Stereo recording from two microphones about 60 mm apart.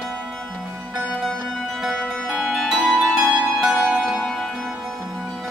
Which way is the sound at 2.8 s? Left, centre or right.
Centre.